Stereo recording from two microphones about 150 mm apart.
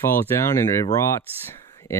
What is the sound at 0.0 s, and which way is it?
Speech, 15° left (ahead or behind).